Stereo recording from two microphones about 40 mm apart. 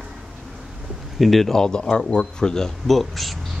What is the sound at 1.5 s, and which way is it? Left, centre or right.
Speech, centre.